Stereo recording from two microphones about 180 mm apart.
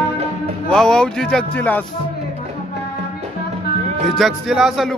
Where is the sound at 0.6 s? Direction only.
5° left (ahead or behind).